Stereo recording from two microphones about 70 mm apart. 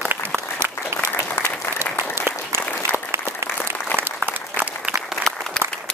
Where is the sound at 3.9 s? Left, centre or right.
Right.